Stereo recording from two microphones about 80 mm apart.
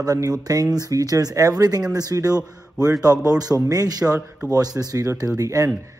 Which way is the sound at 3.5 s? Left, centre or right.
Right.